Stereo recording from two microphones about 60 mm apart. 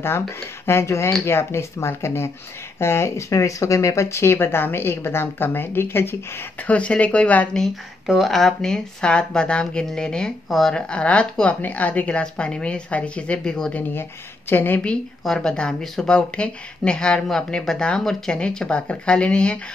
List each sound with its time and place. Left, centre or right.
0.7 s speech: left
6.6 s speech: left
8.1 s speech: centre
14.5 s speech: left
15.2 s speech: centre